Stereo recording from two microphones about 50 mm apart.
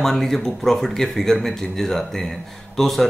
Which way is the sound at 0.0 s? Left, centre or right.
Centre.